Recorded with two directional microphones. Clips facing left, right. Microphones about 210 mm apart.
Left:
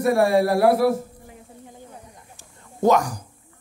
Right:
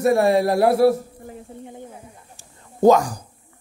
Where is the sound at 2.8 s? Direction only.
30° right (ahead or behind).